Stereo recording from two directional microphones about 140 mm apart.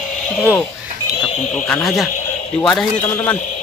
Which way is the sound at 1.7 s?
Centre (ahead or behind).